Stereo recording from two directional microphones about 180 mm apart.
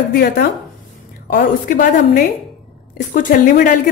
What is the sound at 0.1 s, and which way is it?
A woman's voice, 60° left (ahead or behind).